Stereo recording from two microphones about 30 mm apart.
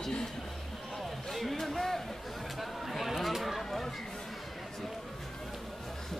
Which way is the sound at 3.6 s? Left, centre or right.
Centre.